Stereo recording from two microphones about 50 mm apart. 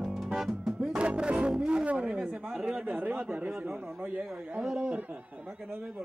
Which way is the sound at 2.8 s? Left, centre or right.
Right.